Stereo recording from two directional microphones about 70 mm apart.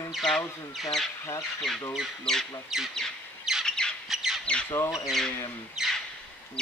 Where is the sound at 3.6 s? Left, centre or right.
Centre.